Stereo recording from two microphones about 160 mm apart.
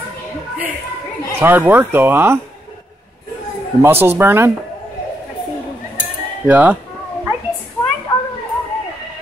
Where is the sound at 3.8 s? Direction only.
15° right (ahead or behind).